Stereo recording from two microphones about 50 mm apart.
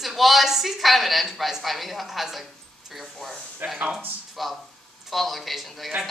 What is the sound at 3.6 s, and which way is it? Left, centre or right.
Speech, right.